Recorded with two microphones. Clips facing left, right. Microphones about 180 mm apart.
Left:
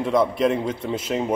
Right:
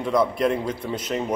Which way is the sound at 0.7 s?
25° left (ahead or behind).